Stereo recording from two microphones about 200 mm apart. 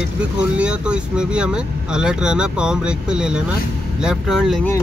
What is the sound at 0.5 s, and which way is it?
Speech, 5° right (ahead or behind).